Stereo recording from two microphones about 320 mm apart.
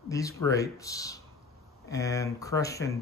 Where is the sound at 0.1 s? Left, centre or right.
Centre.